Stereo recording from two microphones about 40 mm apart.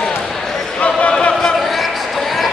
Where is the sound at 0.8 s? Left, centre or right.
Left.